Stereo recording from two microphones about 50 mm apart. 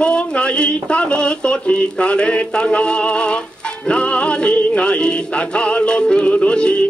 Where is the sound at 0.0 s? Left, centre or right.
Left.